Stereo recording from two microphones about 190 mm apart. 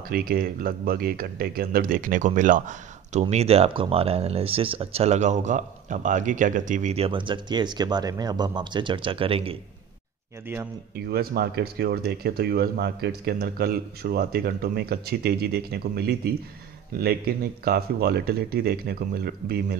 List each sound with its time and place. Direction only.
0.1 s speech: 50° right (ahead or behind); by 9.6 s 30° right (ahead or behind)
11.1 s speech: 55° right (ahead or behind)